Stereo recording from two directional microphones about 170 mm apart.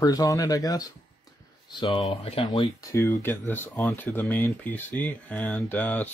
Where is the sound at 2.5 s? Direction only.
20° left (ahead or behind).